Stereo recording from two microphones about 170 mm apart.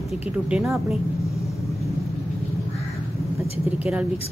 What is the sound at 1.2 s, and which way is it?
Vehicle, 15° left (ahead or behind).